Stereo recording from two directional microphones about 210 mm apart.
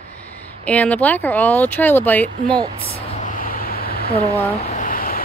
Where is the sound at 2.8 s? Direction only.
35° left (ahead or behind).